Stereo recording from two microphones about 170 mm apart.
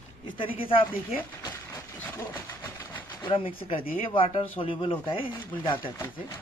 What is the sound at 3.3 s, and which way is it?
Speech, 30° left (ahead or behind).